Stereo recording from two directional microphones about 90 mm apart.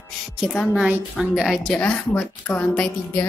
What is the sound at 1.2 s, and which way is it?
Speech, centre (ahead or behind).